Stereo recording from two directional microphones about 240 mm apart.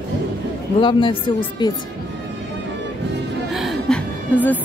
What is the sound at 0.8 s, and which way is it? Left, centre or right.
Speech, left.